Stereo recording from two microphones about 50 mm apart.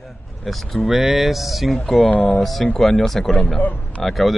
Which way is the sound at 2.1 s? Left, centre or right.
Left.